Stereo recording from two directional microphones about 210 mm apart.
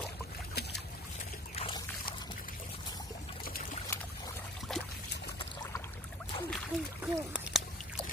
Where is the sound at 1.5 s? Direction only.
25° left (ahead or behind).